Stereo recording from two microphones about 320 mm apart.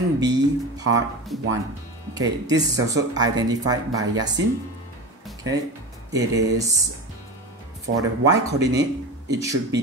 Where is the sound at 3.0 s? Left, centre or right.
Centre.